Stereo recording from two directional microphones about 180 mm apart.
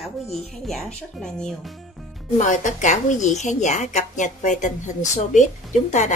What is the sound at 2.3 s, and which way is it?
A woman's voice, 45° left (ahead or behind).